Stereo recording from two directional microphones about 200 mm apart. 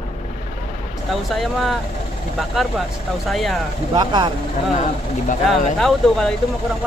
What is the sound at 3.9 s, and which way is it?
Speech, 20° right (ahead or behind).